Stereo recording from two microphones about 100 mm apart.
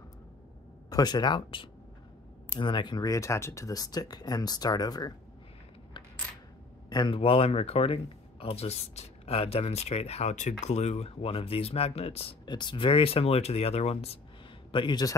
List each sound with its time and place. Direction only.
0.8 s speech: 40° left (ahead or behind)
6.9 s speech: 45° left (ahead or behind)
7.2 s speech: 75° left (ahead or behind)
12.4 s speech: 50° left (ahead or behind); by 14.1 s 90° left
14.7 s speech: 50° left (ahead or behind)